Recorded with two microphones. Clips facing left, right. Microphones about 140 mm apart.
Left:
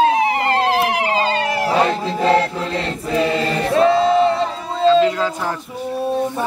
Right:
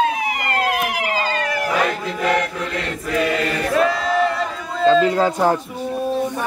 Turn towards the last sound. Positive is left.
turn(degrees=-40)  # may be behind; listen again after turning